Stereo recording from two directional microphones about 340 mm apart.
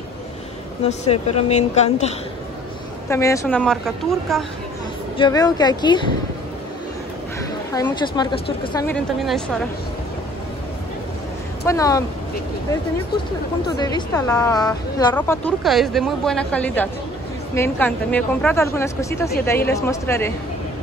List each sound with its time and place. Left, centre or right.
0.8 s speech: centre
3.1 s a woman's voice: centre
5.1 s a woman's voice: centre
7.7 s a woman's voice: centre
11.6 s a woman's voice: centre
13.7 s a woman's voice: centre